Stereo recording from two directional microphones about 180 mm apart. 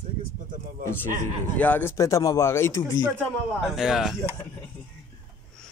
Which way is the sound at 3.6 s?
Centre (ahead or behind).